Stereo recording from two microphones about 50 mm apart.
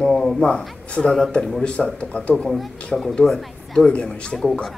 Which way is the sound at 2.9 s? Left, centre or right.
Centre.